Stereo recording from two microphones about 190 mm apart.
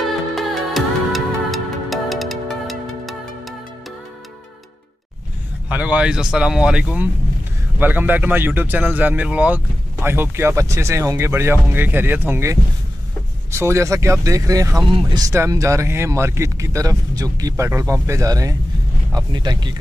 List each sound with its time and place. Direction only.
0.3 s music: centre (ahead or behind)
5.7 s speech: 5° right (ahead or behind)